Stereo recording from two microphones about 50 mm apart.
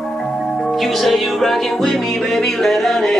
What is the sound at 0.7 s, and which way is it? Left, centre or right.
Music, centre.